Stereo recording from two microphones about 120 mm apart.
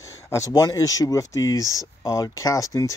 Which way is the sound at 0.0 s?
25° left (ahead or behind).